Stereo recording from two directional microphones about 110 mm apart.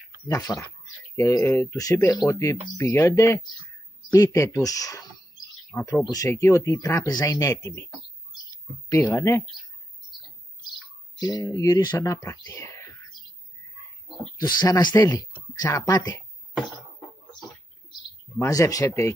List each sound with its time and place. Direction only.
0.5 s speech: 15° left (ahead or behind)
1.3 s speech: 25° left (ahead or behind)
9.0 s speech: 15° left (ahead or behind)
10.7 s chirp: 35° left (ahead or behind)
11.5 s speech: 35° left (ahead or behind)
14.4 s speech: 40° left (ahead or behind)
18.5 s speech: 30° left (ahead or behind)